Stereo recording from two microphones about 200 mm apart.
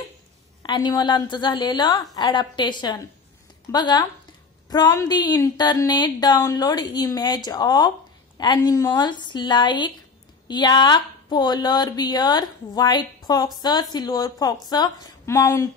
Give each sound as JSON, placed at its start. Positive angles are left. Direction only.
{"t": 0.6, "sound": "speech", "side_deg": 20}